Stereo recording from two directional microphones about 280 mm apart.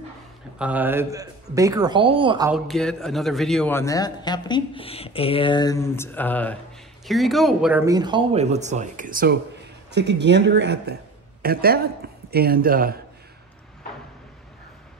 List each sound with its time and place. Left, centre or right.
0.6 s speech: centre
2.5 s a man's voice: centre; by 13.0 s right